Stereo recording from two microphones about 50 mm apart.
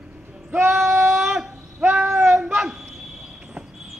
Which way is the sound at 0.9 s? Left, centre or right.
Right.